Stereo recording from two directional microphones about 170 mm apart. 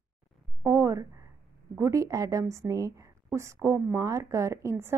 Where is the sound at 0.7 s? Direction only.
20° right (ahead or behind).